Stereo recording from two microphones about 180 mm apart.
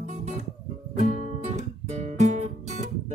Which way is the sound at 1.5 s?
40° right (ahead or behind).